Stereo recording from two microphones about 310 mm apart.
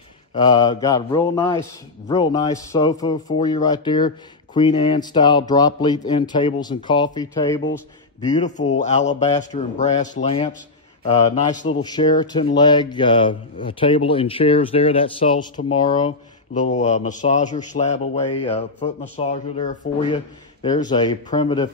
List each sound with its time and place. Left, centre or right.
0.3 s speech: centre
8.3 s speech: left